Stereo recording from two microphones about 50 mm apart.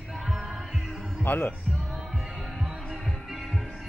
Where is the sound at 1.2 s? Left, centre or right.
Left.